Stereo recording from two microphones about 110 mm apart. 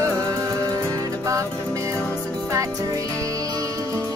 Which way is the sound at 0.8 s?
30° right (ahead or behind).